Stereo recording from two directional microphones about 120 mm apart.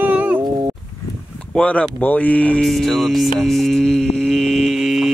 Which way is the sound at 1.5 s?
10° left (ahead or behind).